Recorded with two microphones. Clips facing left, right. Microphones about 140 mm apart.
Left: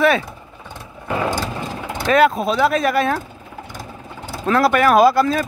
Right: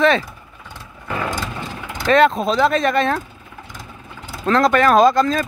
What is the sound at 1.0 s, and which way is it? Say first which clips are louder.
Vehicle: left 3 dB; 25° left (ahead or behind).